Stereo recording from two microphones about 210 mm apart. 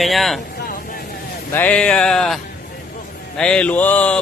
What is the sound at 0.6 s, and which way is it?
Vehicle, 45° left (ahead or behind).